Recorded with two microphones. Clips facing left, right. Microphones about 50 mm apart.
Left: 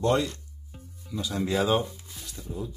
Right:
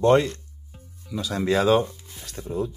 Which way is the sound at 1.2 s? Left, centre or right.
Right.